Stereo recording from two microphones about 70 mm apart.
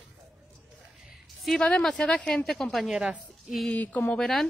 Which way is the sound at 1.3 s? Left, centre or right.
Centre.